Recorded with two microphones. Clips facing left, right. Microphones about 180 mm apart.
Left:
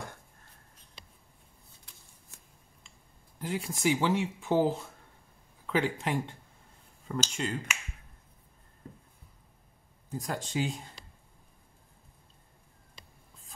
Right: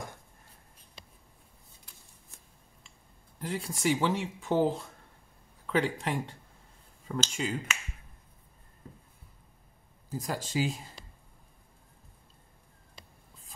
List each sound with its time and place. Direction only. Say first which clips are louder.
3.3 s speech: left 1 dB; centre (ahead or behind)
10.0 s speech: right 1 dB; centre (ahead or behind)